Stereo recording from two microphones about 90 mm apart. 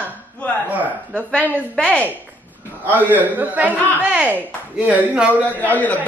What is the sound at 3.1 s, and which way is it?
Speech, 20° right (ahead or behind).